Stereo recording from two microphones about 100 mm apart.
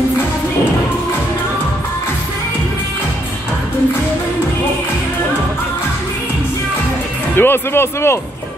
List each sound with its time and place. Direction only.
7.3 s speech: 25° left (ahead or behind)